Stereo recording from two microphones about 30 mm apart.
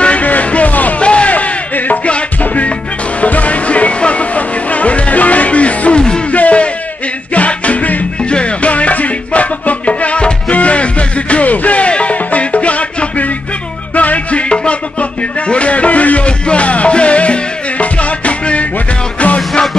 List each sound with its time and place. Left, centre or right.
0.0 s music: left
0.9 s music: left
1.3 s a sound: left
2.4 s music: left
8.2 s music: left
8.5 s music: left
14.5 s music: left
16.3 s music: left